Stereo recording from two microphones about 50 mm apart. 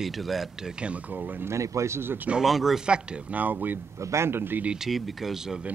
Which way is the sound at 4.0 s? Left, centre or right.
Right.